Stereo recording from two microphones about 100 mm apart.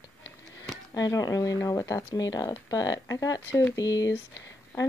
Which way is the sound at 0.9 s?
35° left (ahead or behind).